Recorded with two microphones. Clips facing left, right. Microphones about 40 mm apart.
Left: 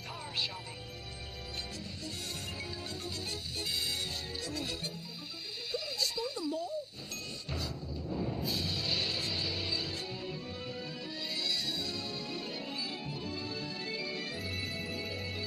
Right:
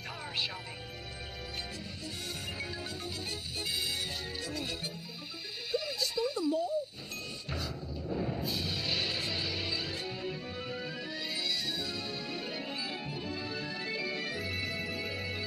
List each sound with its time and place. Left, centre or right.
4.5 s music: centre